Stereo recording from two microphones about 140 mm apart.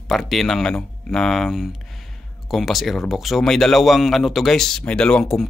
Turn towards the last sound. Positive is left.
turn(degrees=5)  # may be behind; listen again after turning